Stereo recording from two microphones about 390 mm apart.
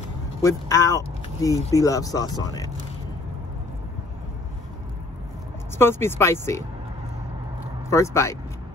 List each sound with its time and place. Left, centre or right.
0.4 s speech: centre
5.8 s speech: centre
7.9 s speech: centre